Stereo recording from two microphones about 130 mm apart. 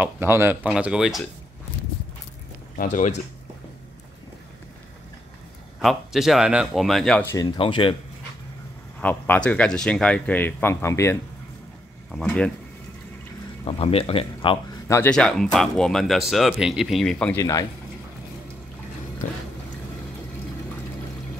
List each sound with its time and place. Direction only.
0.0 s speech: 15° right (ahead or behind)
2.8 s speech: 75° left (ahead or behind)
5.8 s speech: centre (ahead or behind)
7.3 s speech: 40° left (ahead or behind)
9.0 s speech: 15° left (ahead or behind)
13.7 s speech: 45° left (ahead or behind)
15.0 s speech: 5° left (ahead or behind)
17.4 s speech: 25° left (ahead or behind)